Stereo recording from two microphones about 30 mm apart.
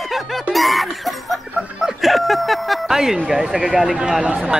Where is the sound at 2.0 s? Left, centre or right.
Centre.